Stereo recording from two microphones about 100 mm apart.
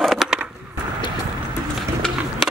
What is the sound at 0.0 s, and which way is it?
Skateboard, 5° right (ahead or behind).